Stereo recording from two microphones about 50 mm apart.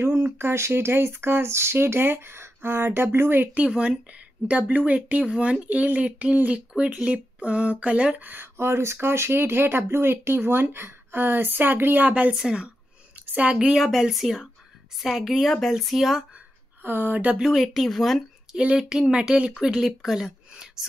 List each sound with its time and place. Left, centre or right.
0.0 s speech: right
3.5 s speech: right
4.5 s speech: right
8.2 s speech: right
8.5 s a woman's voice: right
13.6 s a woman's voice: centre
16.8 s speech: right
17.4 s a woman's voice: centre
18.8 s speech: centre
19.6 s speech: centre